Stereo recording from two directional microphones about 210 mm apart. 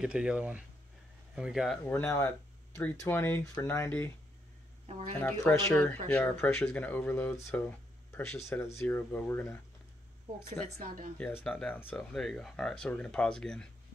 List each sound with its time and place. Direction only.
0.0 s speech: 5° right (ahead or behind)
1.9 s speech: 10° left (ahead or behind)
4.8 s speech: 30° right (ahead or behind)
5.1 s speech: 10° left (ahead or behind)
10.6 s speech: 40° right (ahead or behind)
11.3 s speech: 5° left (ahead or behind)